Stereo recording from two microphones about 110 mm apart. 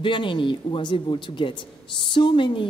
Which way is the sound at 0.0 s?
50° left (ahead or behind).